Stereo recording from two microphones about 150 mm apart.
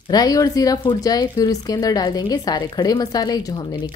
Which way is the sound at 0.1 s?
25° left (ahead or behind).